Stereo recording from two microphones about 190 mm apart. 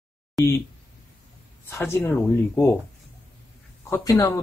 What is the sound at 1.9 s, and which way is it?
Speech, 10° left (ahead or behind).